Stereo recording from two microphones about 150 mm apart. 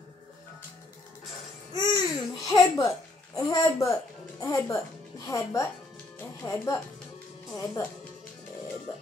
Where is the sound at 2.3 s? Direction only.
20° left (ahead or behind).